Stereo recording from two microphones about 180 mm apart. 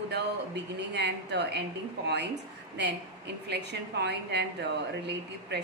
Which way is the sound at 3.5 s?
70° right (ahead or behind).